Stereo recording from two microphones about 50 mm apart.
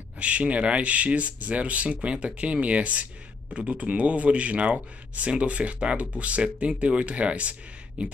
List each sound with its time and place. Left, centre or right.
0.2 s speech: right